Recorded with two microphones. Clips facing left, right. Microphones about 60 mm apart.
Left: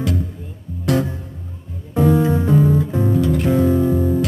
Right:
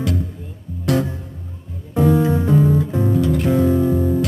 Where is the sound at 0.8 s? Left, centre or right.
Left.